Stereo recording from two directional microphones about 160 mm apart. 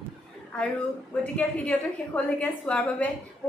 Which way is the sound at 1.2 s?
10° left (ahead or behind).